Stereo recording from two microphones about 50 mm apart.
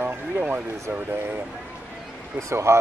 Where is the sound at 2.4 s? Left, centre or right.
Right.